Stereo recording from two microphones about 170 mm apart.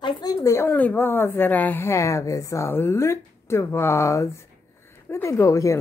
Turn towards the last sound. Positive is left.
turn(degrees=15)  # may be behind; listen again after turning